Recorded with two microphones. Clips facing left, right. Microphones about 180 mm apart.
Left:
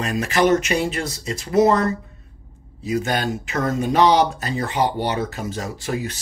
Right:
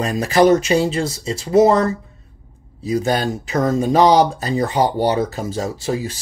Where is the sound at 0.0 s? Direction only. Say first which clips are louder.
Right 5 dB; 35° right (ahead or behind).